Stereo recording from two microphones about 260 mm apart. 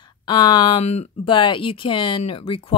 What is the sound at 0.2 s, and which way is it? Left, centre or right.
Speech, centre.